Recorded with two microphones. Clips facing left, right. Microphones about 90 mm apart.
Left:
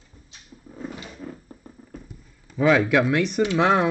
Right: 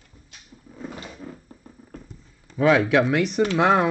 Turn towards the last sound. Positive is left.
turn(degrees=-5)  # may be behind; listen again after turning